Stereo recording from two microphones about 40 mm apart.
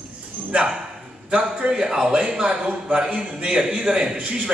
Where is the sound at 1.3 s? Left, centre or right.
Right.